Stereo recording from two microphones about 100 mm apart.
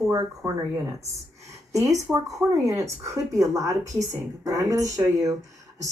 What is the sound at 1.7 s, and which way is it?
A woman's voice, 35° right (ahead or behind).